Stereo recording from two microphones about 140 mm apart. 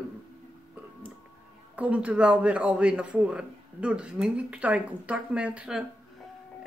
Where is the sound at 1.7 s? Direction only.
10° right (ahead or behind).